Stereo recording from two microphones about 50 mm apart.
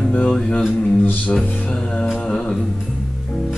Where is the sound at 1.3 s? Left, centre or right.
Centre.